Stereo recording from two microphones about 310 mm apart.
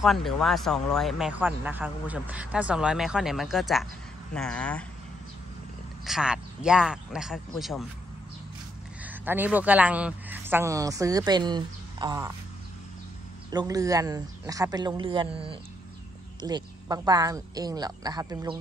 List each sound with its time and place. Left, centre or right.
0.0 s speech: centre
6.0 s speech: centre
9.0 s speech: centre
13.5 s speech: centre